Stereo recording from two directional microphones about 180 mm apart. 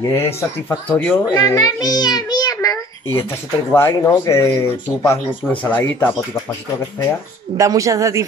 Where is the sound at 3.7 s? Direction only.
15° left (ahead or behind).